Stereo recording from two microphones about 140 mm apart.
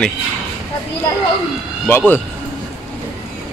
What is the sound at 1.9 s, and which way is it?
Speech, 15° left (ahead or behind).